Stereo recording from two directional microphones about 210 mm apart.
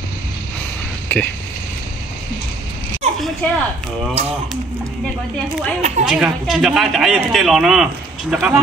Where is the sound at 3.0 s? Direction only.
25° right (ahead or behind).